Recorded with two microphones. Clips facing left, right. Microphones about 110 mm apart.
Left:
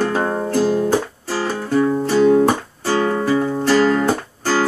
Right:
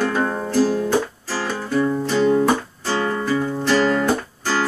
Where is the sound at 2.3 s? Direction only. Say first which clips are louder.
Left 3 dB; 10° left (ahead or behind).